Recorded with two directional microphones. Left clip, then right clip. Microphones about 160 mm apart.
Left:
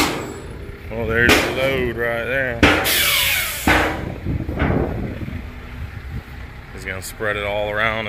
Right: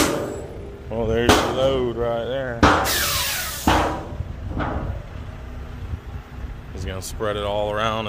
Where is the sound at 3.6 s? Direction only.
50° left (ahead or behind).